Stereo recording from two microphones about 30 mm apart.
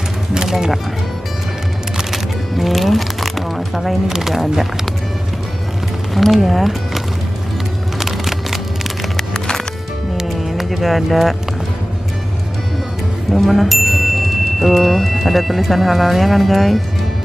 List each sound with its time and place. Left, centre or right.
0.3 s a sound: right
2.1 s music: centre
4.1 s speech: centre
6.1 s speech: centre
6.4 s speech: centre
8.0 s a sound: centre
9.1 s music: left
10.6 s a sound: centre
13.3 s speech: centre